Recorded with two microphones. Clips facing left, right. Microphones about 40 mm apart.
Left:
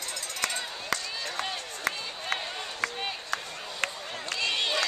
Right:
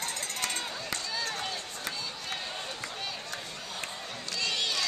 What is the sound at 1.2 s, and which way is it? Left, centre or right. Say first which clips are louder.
Run: left 1 dB; left.